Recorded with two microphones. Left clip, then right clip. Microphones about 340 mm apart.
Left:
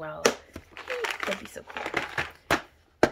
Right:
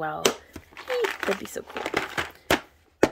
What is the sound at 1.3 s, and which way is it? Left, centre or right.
Speech, centre.